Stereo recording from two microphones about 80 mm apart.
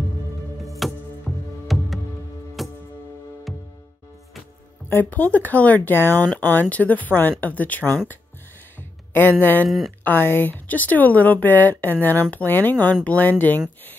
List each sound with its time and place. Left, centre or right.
0.6 s music: centre
4.8 s speech: left
9.4 s speech: left
9.7 s speech: centre
10.0 s speech: left